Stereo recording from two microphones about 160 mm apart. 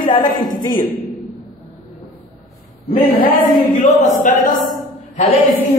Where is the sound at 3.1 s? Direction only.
60° left (ahead or behind).